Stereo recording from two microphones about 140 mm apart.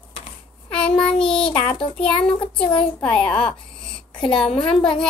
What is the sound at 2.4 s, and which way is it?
Child singing, 35° left (ahead or behind).